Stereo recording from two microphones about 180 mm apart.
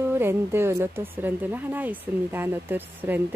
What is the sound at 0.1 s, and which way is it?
Speech, 15° right (ahead or behind).